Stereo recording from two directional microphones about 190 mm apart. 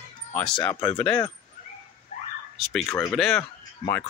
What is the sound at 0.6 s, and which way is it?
Speech, 15° left (ahead or behind).